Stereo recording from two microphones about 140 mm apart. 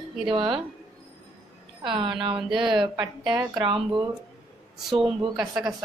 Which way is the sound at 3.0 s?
10° right (ahead or behind).